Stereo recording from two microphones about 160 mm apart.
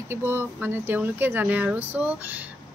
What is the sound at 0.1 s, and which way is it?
Speech, 15° right (ahead or behind).